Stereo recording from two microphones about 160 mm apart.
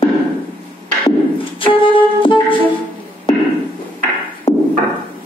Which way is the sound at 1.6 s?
35° left (ahead or behind).